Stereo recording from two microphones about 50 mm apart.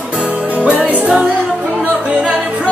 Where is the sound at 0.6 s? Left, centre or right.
Right.